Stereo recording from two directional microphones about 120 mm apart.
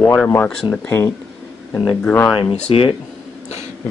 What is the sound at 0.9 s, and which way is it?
Speech, 20° left (ahead or behind).